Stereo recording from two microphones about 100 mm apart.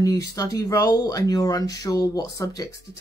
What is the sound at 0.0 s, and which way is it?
Speech, 35° left (ahead or behind).